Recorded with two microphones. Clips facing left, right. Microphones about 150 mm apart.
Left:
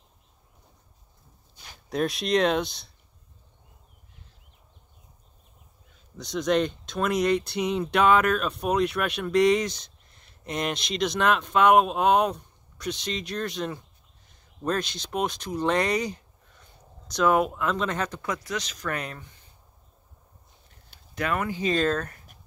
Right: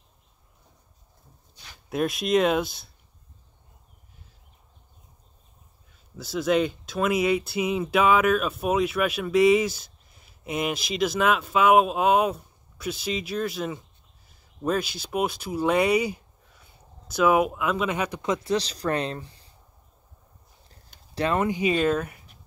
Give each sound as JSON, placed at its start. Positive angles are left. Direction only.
{"t": 1.9, "sound": "speech", "side_deg": 0}
{"t": 6.1, "sound": "speech", "side_deg": -5}
{"t": 18.2, "sound": "speech", "side_deg": -25}
{"t": 20.6, "sound": "a sound", "side_deg": -35}
{"t": 21.5, "sound": "speech", "side_deg": -10}